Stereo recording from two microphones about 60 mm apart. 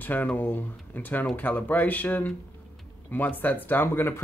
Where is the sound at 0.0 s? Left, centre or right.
Left.